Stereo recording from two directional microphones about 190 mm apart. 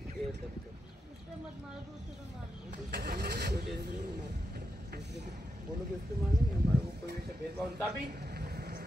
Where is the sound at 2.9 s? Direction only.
60° right (ahead or behind).